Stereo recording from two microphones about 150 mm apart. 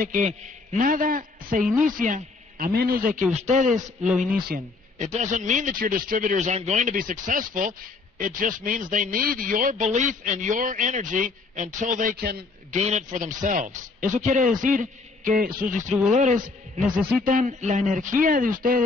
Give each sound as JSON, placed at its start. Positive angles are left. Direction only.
{"t": 0.0, "sound": "a man's voice", "side_deg": -55}
{"t": 4.9, "sound": "a man's voice", "side_deg": -50}
{"t": 12.7, "sound": "a man's voice", "side_deg": -50}
{"t": 16.1, "sound": "a man's voice", "side_deg": -55}